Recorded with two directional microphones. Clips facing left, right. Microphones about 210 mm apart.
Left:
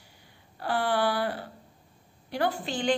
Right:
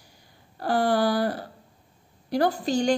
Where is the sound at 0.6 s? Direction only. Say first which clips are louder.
Right 4 dB; 40° right (ahead or behind).